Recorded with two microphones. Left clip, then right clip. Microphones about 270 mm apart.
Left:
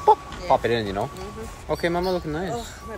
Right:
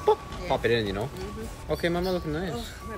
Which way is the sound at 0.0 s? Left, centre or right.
Centre.